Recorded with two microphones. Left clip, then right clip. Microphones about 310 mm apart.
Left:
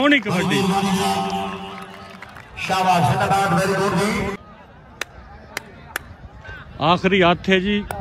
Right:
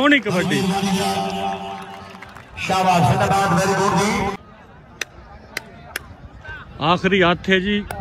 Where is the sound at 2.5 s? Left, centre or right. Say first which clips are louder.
Right 1 dB; right.